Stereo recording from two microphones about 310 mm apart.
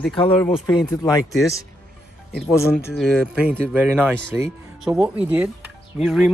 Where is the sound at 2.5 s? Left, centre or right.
Centre.